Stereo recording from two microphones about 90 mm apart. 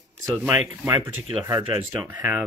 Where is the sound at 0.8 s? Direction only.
30° right (ahead or behind).